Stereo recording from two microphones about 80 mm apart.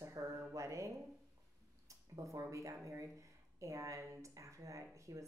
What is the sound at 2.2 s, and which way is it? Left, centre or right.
Speech, right.